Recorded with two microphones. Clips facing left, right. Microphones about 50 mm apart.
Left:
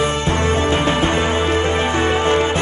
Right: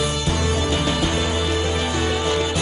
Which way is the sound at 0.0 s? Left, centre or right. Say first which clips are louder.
Left 5 dB; left.